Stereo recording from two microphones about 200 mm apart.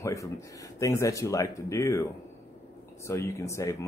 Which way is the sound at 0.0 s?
15° left (ahead or behind).